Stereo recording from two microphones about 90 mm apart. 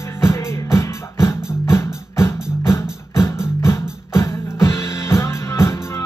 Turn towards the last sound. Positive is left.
turn(degrees=30)  # may be behind; listen again after turning